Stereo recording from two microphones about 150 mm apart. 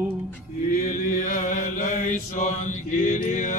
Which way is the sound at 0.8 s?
60° left (ahead or behind).